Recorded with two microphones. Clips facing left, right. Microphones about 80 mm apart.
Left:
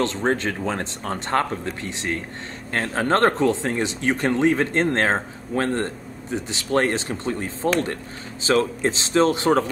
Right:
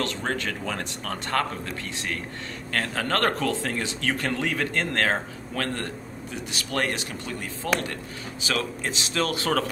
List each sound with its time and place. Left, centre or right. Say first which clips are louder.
0.0 s speech: left 6 dB; left